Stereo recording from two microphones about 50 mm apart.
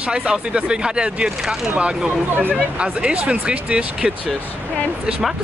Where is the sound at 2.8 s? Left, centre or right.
Centre.